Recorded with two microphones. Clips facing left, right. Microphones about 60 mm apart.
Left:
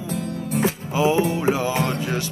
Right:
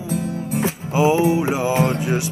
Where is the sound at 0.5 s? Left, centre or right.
Centre.